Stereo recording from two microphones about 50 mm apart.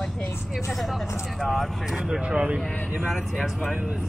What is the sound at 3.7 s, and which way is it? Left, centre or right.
Speech, right.